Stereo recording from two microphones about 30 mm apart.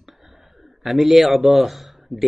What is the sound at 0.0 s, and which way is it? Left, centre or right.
A man's voice, centre.